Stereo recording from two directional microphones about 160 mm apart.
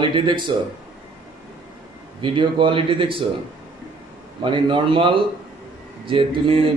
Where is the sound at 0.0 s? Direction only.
30° right (ahead or behind).